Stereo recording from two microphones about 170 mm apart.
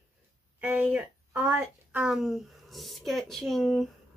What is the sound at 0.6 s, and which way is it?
A woman's voice, 10° right (ahead or behind).